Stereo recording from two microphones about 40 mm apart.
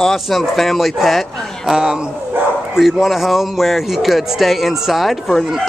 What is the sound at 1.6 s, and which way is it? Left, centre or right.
Speech, centre.